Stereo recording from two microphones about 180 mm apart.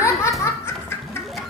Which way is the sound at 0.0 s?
15° left (ahead or behind).